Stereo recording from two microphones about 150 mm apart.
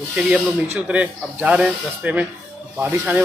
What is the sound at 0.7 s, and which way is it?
Speech, 10° right (ahead or behind).